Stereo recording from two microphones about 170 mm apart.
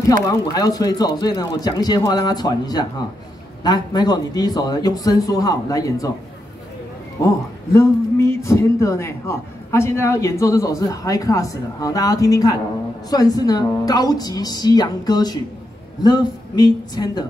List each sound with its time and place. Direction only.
0.3 s speech: 20° left (ahead or behind)
7.7 s a man's voice: 15° left (ahead or behind)